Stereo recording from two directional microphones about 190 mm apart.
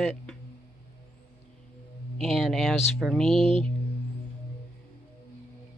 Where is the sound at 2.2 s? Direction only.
Centre (ahead or behind).